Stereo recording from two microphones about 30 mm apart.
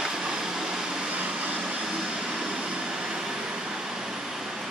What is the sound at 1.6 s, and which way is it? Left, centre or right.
Vacuum cleaner, centre.